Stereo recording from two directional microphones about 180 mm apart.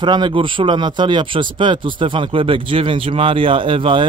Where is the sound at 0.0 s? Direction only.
25° right (ahead or behind).